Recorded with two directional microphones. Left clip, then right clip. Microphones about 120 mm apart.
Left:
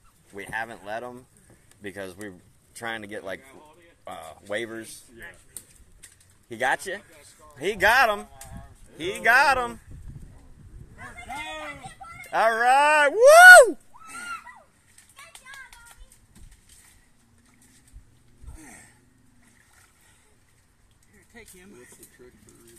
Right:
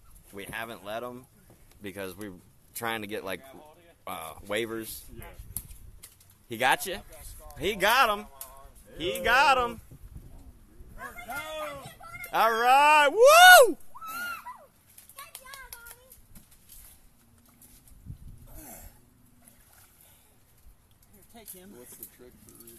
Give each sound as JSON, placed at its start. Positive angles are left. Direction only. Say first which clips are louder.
{"t": 0.3, "sound": "speech", "louder": "left 5 dB", "side_deg": -25}
{"t": 2.7, "sound": "speech", "louder": "even", "side_deg": -45}
{"t": 3.0, "sound": "speech", "louder": "even", "side_deg": -55}
{"t": 6.5, "sound": "speech", "louder": "even", "side_deg": -60}
{"t": 7.7, "sound": "speech", "louder": "left 4 dB", "side_deg": -15}
{"t": 12.3, "sound": "speech", "louder": "left 2 dB", "side_deg": -25}
{"t": 15.3, "sound": "a sound", "louder": "left 5 dB", "side_deg": -50}
{"t": 18.6, "sound": "gasp", "louder": "left 2 dB", "side_deg": -15}
{"t": 21.9, "sound": "speech", "louder": "left 1 dB", "side_deg": 0}